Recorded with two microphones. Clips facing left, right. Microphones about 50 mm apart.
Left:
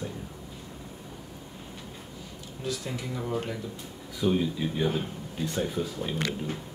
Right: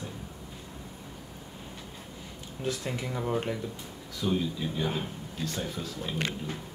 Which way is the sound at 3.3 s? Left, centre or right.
Right.